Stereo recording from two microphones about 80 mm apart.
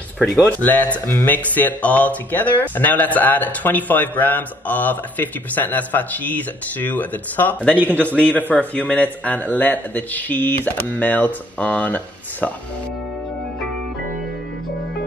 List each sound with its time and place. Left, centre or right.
0.5 s speech: centre